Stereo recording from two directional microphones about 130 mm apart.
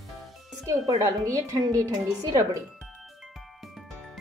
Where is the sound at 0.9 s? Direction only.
25° right (ahead or behind).